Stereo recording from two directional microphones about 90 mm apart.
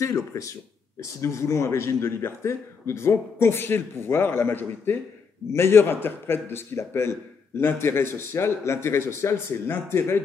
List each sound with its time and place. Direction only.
0.0 s a man's voice: 35° left (ahead or behind)